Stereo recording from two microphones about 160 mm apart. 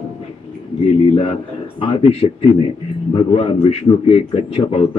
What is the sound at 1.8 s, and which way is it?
A man's voice, 35° left (ahead or behind).